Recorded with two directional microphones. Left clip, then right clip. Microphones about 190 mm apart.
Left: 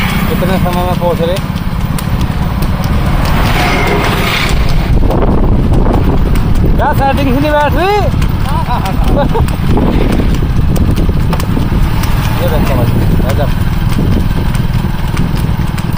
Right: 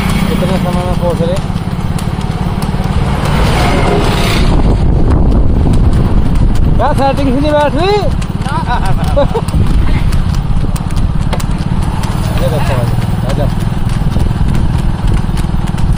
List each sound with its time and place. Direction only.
6.8 s speech: 5° left (ahead or behind)